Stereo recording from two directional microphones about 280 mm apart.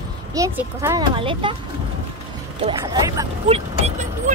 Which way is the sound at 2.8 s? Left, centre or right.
Centre.